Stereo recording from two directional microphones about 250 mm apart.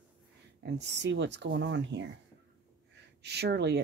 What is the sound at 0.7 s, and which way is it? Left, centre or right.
Speech, right.